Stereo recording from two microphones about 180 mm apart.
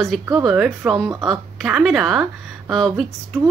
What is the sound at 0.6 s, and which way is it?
A woman's voice, 5° right (ahead or behind).